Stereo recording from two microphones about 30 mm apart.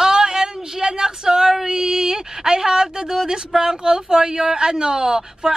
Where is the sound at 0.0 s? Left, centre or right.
Right.